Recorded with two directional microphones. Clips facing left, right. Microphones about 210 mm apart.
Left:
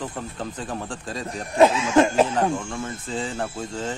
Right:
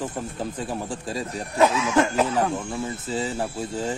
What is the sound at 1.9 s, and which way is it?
Speech, 25° left (ahead or behind).